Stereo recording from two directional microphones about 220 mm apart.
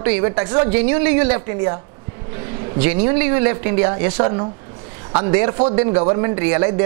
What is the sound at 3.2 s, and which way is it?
A woman's voice, 15° right (ahead or behind).